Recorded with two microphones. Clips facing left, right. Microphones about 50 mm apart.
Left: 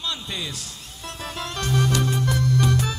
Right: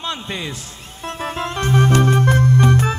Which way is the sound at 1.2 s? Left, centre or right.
Right.